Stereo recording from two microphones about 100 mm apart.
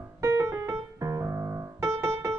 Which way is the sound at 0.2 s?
30° right (ahead or behind).